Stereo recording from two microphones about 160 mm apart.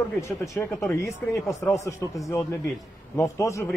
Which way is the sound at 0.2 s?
15° left (ahead or behind).